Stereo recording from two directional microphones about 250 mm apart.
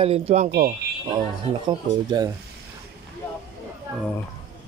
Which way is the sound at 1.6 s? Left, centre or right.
Centre.